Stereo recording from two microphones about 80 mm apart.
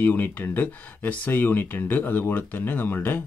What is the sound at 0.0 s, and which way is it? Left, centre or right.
Speech, left.